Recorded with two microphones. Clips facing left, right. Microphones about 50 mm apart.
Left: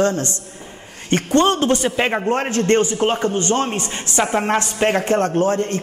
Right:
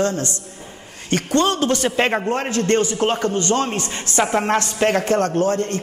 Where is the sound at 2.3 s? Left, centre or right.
Left.